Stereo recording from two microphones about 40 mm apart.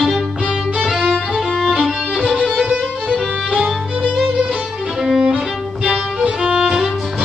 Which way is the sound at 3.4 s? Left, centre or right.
Centre.